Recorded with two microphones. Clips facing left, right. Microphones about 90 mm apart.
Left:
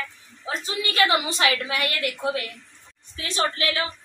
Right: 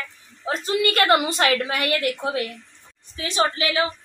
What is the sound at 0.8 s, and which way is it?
A woman's voice, 55° right (ahead or behind).